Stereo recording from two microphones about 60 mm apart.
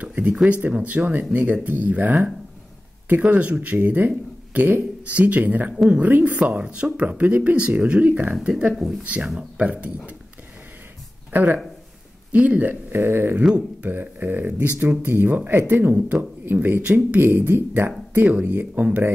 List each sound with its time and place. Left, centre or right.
0.0 s a sound: right
0.5 s speech: right
8.7 s speech: centre
9.6 s speech: right
11.3 s speech: right